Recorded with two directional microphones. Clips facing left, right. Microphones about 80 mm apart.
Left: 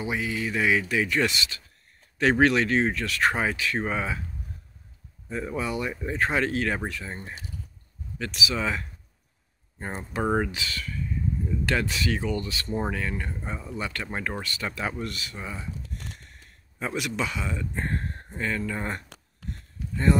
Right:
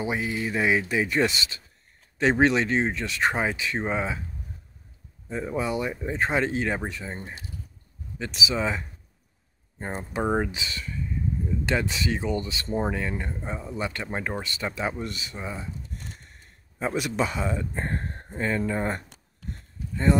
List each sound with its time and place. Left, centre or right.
0.0 s speech: right
5.3 s speech: centre
8.3 s speech: right
9.8 s speech: centre
10.5 s speech: centre
16.9 s speech: right